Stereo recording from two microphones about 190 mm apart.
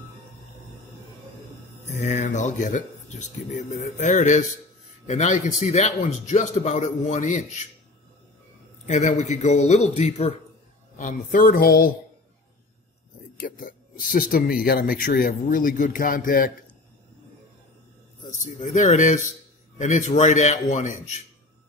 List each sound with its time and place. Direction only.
1.9 s speech: 40° left (ahead or behind)
8.8 s speech: 40° left (ahead or behind)
13.4 s speech: 45° left (ahead or behind)
18.4 s speech: 40° left (ahead or behind)